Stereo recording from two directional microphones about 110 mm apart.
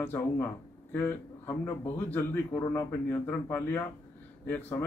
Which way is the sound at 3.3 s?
15° left (ahead or behind).